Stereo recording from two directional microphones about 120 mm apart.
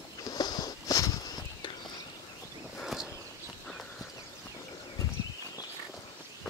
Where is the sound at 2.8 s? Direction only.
Centre (ahead or behind).